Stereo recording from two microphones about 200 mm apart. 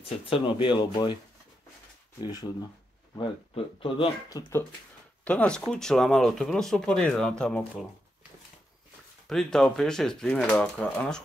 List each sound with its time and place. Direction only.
0.3 s speech: 25° left (ahead or behind)
2.2 s speech: 20° left (ahead or behind); by 7.8 s 5° left (ahead or behind)
9.3 s speech: centre (ahead or behind)